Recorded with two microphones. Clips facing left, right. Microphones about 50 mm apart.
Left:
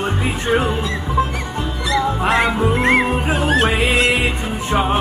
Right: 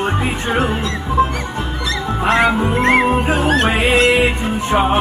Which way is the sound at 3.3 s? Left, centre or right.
Centre.